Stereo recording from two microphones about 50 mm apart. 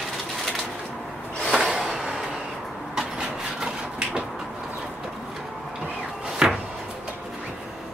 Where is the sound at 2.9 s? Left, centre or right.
Centre.